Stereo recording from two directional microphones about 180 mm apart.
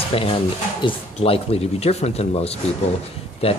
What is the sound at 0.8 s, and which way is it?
Speech, 35° left (ahead or behind).